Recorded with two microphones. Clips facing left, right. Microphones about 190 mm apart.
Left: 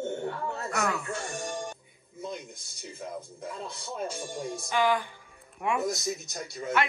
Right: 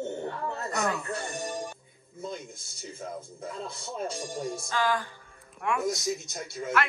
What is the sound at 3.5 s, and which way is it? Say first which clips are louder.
Speech: right 1 dB; centre (ahead or behind).